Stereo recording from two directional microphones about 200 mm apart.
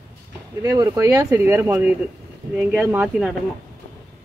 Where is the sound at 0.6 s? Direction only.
15° right (ahead or behind).